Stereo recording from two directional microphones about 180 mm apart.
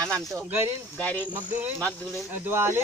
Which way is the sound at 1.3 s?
10° right (ahead or behind).